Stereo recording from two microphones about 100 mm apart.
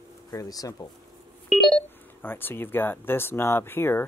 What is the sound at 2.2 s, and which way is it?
Speech, 20° left (ahead or behind).